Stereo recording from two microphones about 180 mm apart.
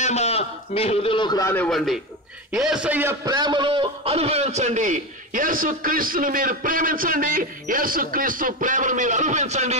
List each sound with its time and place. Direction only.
0.0 s a man's voice: 35° left (ahead or behind)
1.5 s a man's voice: 5° left (ahead or behind); by 9.8 s 40° right (ahead or behind)